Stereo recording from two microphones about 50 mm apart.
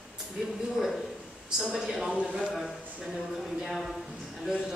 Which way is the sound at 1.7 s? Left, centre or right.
Centre.